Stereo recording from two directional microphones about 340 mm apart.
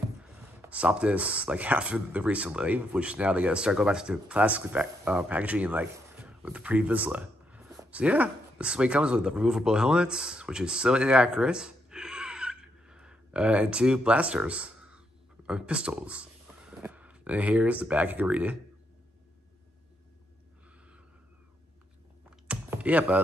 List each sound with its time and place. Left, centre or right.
0.2 s speech: centre
16.5 s vehicle: centre
16.8 s speech: centre
22.5 s computer keyboard: centre